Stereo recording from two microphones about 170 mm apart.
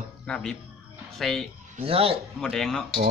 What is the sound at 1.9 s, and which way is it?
Speech, 35° right (ahead or behind).